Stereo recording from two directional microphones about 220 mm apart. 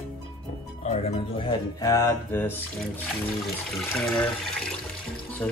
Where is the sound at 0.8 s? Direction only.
25° left (ahead or behind); by 4.7 s 5° left (ahead or behind).